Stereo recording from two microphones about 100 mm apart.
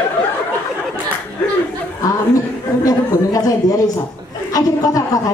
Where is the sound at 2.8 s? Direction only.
35° left (ahead or behind).